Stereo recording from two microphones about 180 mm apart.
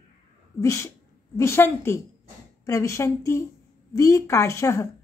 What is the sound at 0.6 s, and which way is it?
A woman's voice, 15° left (ahead or behind).